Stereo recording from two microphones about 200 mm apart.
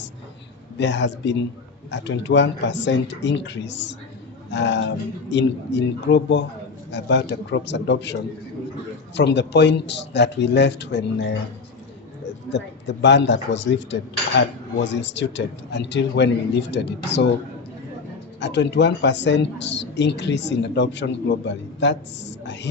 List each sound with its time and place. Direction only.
0.7 s a man's voice: 60° left (ahead or behind)
12.4 s a man's voice: 60° left (ahead or behind)
18.4 s a man's voice: 60° left (ahead or behind)